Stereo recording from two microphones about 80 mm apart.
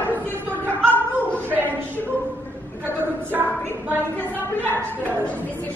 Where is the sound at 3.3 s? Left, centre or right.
Right.